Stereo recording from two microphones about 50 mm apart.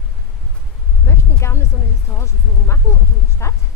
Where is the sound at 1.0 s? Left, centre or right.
Left.